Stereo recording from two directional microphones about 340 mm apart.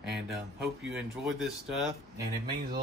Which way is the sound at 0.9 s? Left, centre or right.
Centre.